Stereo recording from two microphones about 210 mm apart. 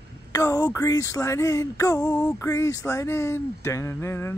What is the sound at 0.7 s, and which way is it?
Speech, 15° left (ahead or behind).